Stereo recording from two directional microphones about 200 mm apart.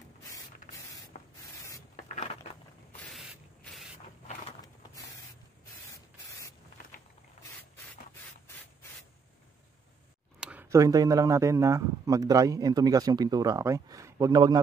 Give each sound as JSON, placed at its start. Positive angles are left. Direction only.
{"t": 0.2, "sound": "spray", "side_deg": 15}
{"t": 2.0, "sound": "a sound", "side_deg": 35}
{"t": 3.0, "sound": "spray", "side_deg": 0}
{"t": 5.9, "sound": "spray", "side_deg": 15}
{"t": 10.4, "sound": "speech", "side_deg": -10}